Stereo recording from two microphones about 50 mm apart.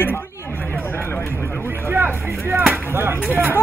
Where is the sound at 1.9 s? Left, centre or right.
Right.